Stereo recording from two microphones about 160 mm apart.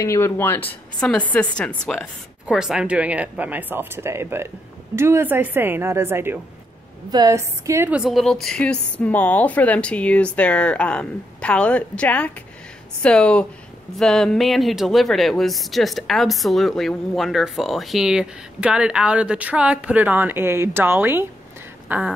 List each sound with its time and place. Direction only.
0.0 s speech: 15° left (ahead or behind)
2.4 s a woman's voice: 5° right (ahead or behind)
7.9 s speech: centre (ahead or behind)
21.8 s a sound: 10° right (ahead or behind)